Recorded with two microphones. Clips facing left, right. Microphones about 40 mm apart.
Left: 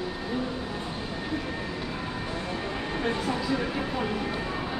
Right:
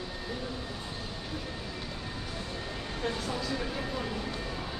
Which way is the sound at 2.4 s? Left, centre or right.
Left.